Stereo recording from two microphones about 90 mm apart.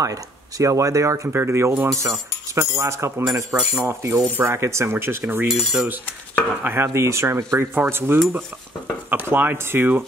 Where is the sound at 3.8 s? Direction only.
30° right (ahead or behind).